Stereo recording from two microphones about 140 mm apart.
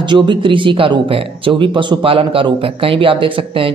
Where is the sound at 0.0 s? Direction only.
35° right (ahead or behind).